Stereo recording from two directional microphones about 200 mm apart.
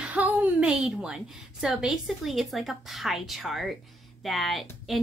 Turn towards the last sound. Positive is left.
turn(degrees=0)  # may be behind; listen again after turning